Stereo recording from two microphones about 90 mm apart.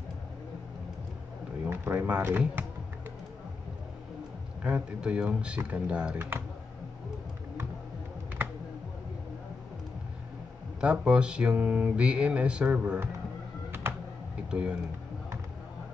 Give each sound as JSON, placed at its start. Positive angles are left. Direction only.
{"t": 1.7, "sound": "speech", "side_deg": -20}
{"t": 4.6, "sound": "speech", "side_deg": -15}
{"t": 10.8, "sound": "speech", "side_deg": -10}
{"t": 14.5, "sound": "speech", "side_deg": -10}